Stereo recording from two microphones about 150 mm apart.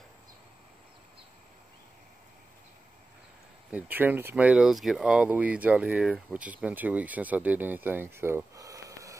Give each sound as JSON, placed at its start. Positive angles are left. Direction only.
{"t": 3.7, "sound": "speech", "side_deg": -10}